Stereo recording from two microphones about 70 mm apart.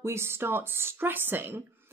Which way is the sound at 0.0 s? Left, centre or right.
Right.